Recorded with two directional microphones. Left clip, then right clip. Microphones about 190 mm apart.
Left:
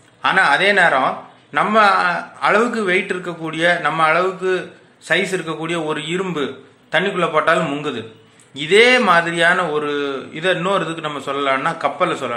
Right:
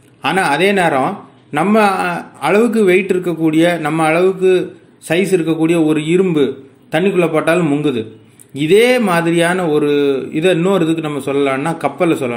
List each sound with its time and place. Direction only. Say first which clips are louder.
0.2 s a man's voice: even; 35° right (ahead or behind)